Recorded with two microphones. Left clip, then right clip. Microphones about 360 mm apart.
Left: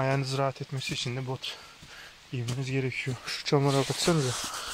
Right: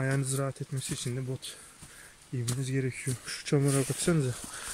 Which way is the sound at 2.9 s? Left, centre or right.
Centre.